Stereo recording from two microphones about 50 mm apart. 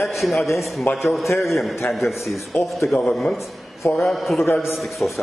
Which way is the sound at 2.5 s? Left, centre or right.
Left.